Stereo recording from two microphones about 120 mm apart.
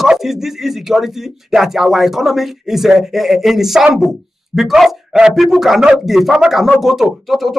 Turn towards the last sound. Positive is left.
turn(degrees=0)  # may be behind; listen again after turning